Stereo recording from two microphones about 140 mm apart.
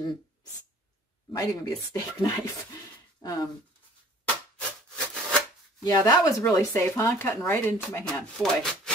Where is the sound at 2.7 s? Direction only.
25° left (ahead or behind).